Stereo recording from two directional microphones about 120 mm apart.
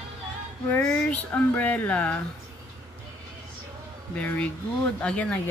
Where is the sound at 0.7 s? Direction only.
15° left (ahead or behind).